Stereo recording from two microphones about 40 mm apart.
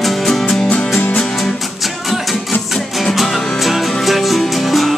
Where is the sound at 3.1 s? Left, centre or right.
Centre.